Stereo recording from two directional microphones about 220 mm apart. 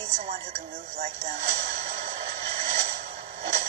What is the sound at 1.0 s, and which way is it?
Music, 30° right (ahead or behind).